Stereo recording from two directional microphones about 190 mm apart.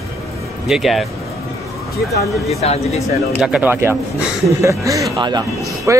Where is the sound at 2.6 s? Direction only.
35° left (ahead or behind).